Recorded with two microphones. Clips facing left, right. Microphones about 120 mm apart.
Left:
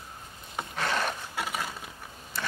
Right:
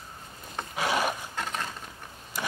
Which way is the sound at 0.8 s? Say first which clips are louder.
Right 3 dB; 10° right (ahead or behind).